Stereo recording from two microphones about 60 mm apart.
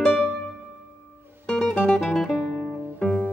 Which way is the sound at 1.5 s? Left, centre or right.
Centre.